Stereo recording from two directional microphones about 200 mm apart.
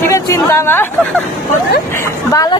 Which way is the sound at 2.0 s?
15° left (ahead or behind).